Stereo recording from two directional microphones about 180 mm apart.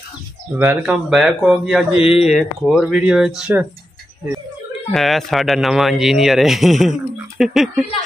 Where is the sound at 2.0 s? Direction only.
30° left (ahead or behind).